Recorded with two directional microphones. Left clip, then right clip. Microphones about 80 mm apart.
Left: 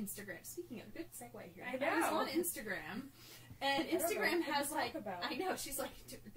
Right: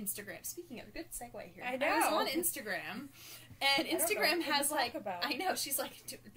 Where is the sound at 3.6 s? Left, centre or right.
Right.